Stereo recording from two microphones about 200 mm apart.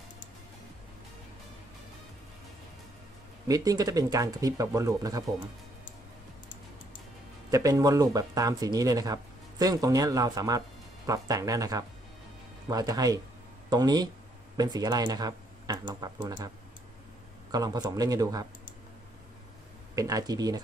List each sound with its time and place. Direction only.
3.4 s speech: 20° right (ahead or behind)
7.5 s speech: 15° right (ahead or behind)
17.5 s speech: 20° right (ahead or behind)
20.0 s speech: 20° right (ahead or behind)